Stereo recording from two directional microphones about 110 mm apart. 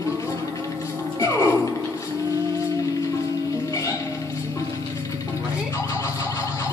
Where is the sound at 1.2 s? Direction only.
25° left (ahead or behind).